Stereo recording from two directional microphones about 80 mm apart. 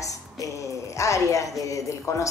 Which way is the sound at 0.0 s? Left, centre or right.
Left.